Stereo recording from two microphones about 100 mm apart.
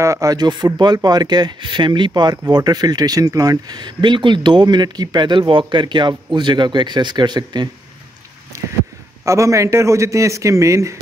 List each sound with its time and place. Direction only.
0.0 s speech: 35° right (ahead or behind); by 2.3 s 50° right (ahead or behind)
2.3 s speech: 40° right (ahead or behind)
8.5 s a sound: 30° right (ahead or behind)
9.2 s a man's voice: 30° right (ahead or behind)